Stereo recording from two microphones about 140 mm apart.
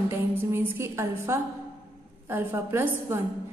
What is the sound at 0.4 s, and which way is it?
A woman's voice, 15° right (ahead or behind).